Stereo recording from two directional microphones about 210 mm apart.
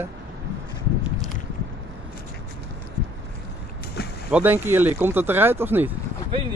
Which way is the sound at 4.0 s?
50° left (ahead or behind).